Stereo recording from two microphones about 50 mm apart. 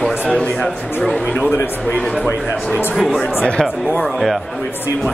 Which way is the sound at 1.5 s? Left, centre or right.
Left.